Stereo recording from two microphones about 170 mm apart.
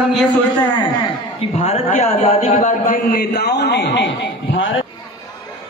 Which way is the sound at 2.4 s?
50° left (ahead or behind).